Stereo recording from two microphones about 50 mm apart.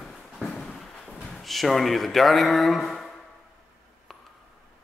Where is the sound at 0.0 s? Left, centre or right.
Centre.